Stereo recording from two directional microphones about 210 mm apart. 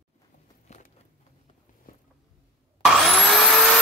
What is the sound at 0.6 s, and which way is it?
Walk, 35° left (ahead or behind).